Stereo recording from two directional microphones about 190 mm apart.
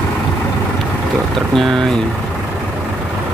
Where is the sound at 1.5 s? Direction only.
Centre (ahead or behind).